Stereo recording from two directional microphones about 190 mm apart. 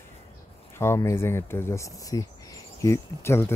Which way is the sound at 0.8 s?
15° left (ahead or behind).